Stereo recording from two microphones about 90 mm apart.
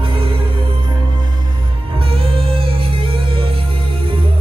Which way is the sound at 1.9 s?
90° right.